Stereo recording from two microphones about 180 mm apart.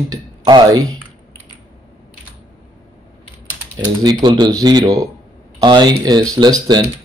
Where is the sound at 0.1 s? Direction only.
20° right (ahead or behind).